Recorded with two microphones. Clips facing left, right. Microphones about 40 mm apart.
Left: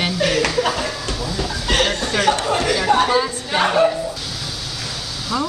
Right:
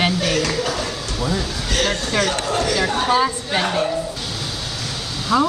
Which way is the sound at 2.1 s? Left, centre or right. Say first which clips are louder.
Left 4 dB; left.